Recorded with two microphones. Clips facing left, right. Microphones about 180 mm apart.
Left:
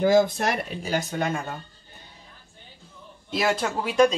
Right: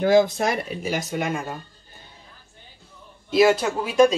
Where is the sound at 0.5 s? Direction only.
10° right (ahead or behind).